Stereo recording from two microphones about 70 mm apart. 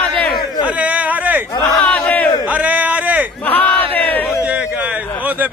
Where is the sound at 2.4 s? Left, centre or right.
Centre.